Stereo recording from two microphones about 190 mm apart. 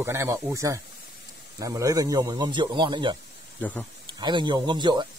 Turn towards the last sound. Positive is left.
turn(degrees=-25)  # may be behind; listen again after turning